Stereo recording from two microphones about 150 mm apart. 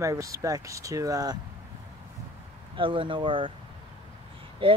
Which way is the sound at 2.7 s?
35° right (ahead or behind).